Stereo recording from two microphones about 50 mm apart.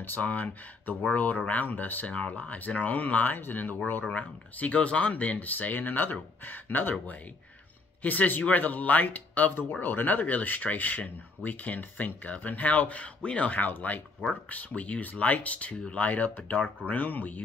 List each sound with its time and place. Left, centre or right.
0.2 s speech: left